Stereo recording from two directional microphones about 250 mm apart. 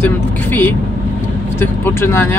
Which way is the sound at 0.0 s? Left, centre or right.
Centre.